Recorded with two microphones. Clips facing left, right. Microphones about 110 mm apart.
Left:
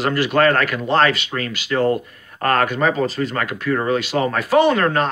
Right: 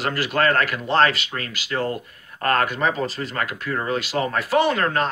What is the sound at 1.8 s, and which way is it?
Speech, 35° left (ahead or behind).